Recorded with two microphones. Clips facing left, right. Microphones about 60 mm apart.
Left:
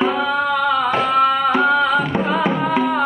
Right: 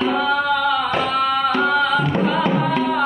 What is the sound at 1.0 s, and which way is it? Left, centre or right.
Music, centre.